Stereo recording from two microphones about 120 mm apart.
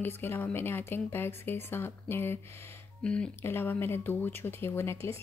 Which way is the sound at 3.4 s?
20° left (ahead or behind).